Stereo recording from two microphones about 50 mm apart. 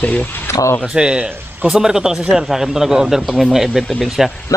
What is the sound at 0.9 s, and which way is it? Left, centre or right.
Speech, centre.